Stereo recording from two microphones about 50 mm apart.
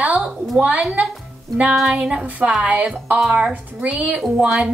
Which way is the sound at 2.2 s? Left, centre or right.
Right.